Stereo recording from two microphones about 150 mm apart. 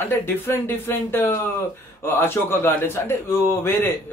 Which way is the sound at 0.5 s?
15° left (ahead or behind).